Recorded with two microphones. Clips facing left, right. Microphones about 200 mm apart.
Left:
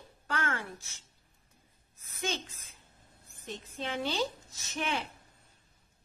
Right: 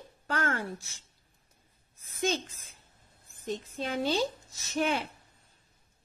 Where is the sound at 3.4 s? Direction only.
45° right (ahead or behind).